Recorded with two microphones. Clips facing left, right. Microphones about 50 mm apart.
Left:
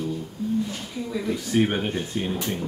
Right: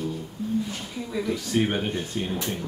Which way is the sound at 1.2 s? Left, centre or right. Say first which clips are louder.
Left 2 dB; centre.